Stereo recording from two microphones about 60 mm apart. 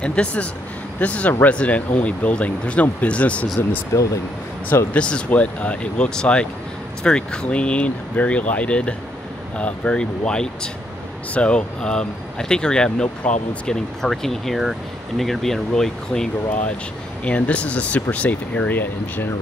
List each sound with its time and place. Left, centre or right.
0.0 s speech: centre
3.9 s speech: left
4.9 s speech: centre
17.2 s speech: left